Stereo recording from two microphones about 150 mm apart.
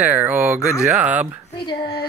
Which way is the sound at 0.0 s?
10° right (ahead or behind).